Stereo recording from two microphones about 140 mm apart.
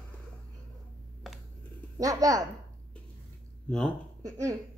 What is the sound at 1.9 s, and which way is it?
Speech, 25° right (ahead or behind).